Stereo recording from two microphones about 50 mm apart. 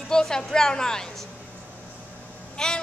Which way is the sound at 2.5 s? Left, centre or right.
Centre.